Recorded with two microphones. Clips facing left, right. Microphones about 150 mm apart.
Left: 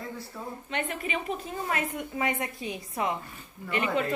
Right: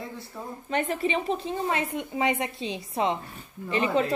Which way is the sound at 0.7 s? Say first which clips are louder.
Right 7 dB; 35° right (ahead or behind).